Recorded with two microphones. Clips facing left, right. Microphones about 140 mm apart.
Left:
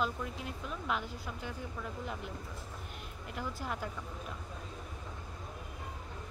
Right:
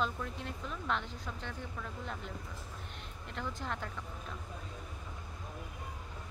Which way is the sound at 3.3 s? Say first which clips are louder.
Left 1 dB; 10° left (ahead or behind).